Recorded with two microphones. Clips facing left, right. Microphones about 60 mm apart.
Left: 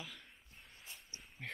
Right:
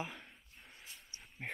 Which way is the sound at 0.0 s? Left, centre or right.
Right.